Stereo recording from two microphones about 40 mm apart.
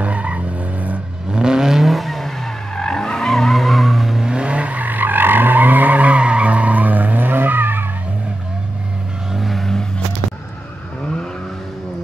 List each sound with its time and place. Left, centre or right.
0.0 s vehicle: right
1.3 s vehicle: centre
4.3 s vehicle: right
9.3 s vehicle: centre